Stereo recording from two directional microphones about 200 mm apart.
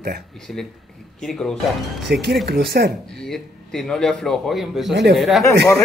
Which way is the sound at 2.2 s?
55° right (ahead or behind).